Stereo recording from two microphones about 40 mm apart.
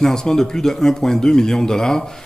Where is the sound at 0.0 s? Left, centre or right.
Centre.